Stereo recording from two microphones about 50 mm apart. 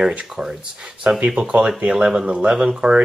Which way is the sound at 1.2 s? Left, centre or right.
Centre.